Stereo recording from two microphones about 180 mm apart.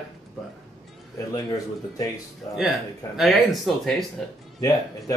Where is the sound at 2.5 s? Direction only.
Centre (ahead or behind).